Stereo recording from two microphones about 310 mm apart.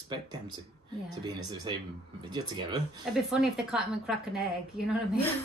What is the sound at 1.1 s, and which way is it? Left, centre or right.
Speech, centre.